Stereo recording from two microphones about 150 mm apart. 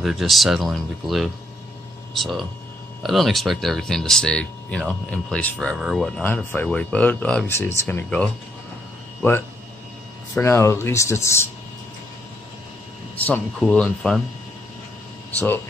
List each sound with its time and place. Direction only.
0.0 s speech: centre (ahead or behind)
10.3 s speech: 20° left (ahead or behind)
13.1 s speech: 10° left (ahead or behind)